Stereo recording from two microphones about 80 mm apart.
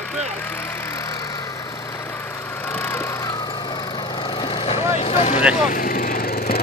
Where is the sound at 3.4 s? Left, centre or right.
Left.